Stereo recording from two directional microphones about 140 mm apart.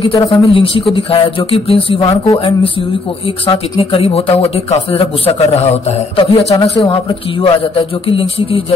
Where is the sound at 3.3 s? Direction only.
45° left (ahead or behind).